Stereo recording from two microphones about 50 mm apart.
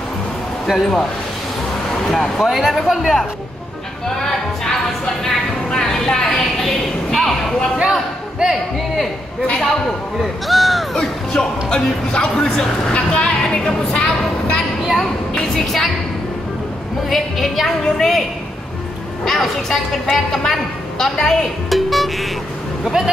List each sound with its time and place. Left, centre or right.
0.7 s speech: centre
2.0 s a woman's voice: centre
2.5 s speech: centre
5.7 s a sound: centre
8.4 s speech: centre
9.5 s a woman's voice: centre
10.5 s music: centre
12.1 s a woman's voice: centre
15.5 s a woman's voice: centre
17.1 s speech: centre
19.2 s speech: centre
22.8 s speech: centre